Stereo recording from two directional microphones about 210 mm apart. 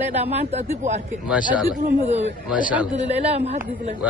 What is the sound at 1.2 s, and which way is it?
Speech, 5° right (ahead or behind).